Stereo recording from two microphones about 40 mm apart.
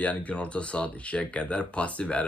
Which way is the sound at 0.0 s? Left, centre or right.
Left.